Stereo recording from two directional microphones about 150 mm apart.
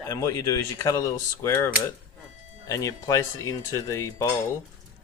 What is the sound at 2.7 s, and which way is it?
Speech, 20° left (ahead or behind).